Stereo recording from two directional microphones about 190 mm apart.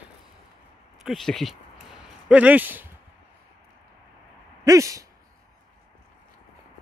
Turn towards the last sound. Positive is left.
turn(degrees=-15)  # may be behind; listen again after turning